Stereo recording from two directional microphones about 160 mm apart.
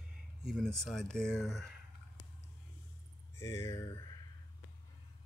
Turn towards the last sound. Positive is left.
turn(degrees=20)  # may be behind; listen again after turning